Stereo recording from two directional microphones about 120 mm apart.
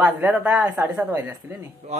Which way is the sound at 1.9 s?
65° right (ahead or behind).